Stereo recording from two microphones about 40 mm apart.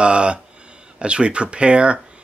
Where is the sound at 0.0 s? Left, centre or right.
Right.